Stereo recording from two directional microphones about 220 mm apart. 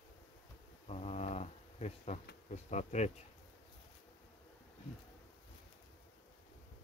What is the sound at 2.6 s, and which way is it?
Speech, 30° left (ahead or behind).